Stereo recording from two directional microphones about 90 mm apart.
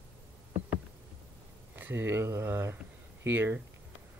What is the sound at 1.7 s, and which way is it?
Speech, 25° right (ahead or behind).